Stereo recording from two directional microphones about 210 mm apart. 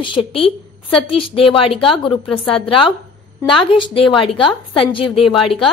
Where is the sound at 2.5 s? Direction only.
25° left (ahead or behind).